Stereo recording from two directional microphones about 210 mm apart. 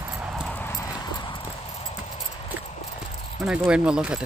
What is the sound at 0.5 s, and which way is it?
Clip-clop, 10° left (ahead or behind).